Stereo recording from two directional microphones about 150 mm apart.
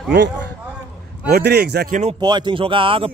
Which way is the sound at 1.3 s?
90° right.